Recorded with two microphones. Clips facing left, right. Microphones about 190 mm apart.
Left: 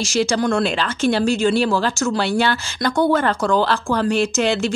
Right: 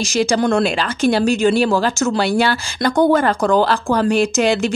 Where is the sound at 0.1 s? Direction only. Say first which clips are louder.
Right 3 dB; 15° right (ahead or behind).